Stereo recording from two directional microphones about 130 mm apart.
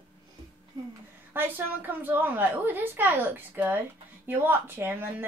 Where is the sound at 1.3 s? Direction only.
15° right (ahead or behind).